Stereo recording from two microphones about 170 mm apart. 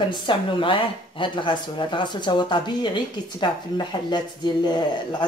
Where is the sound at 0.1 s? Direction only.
30° left (ahead or behind).